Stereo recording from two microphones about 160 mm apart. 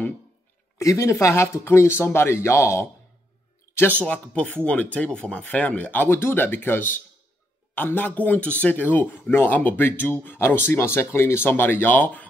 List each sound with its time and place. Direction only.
0.7 s speech: 20° left (ahead or behind)